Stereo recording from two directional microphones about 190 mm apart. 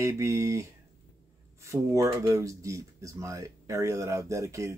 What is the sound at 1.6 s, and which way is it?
Speech, 15° right (ahead or behind).